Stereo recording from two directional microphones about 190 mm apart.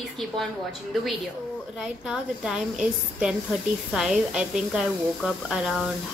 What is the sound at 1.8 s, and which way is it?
A woman's voice, 5° right (ahead or behind).